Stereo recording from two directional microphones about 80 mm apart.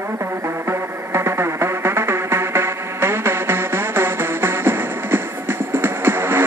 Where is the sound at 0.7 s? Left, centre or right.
Right.